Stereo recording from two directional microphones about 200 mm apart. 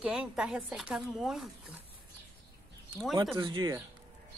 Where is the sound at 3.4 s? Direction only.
25° right (ahead or behind).